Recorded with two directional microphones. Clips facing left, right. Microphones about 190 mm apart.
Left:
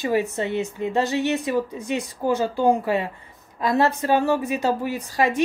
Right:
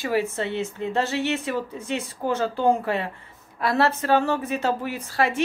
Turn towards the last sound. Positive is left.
turn(degrees=15)  # may be behind; listen again after turning